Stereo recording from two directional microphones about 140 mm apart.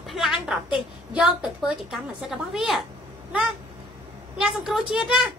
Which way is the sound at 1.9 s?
5° right (ahead or behind).